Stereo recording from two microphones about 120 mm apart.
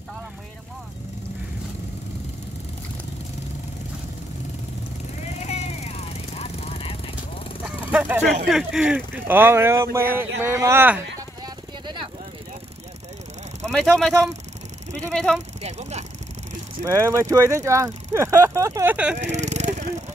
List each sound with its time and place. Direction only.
5.4 s vehicle: 65° left (ahead or behind)
7.6 s vehicle: 15° right (ahead or behind)
8.5 s speech: 5° right (ahead or behind); by 11.0 s 20° right (ahead or behind)
11.1 s vehicle: 35° right (ahead or behind)
13.9 s speech: 5° left (ahead or behind)
15.6 s speech: 70° right (ahead or behind)
16.8 s speech: 25° right (ahead or behind)
19.1 s vehicle: 75° right (ahead or behind)